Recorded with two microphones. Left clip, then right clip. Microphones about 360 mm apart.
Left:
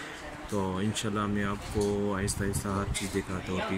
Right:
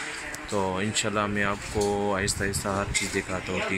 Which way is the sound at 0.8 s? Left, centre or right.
Centre.